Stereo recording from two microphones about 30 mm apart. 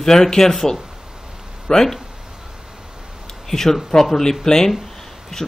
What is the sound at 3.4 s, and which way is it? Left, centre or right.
Speech, centre.